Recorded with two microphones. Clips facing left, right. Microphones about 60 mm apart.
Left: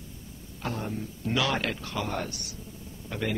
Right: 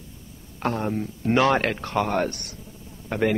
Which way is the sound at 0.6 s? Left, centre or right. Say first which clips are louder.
Right 8 dB; right.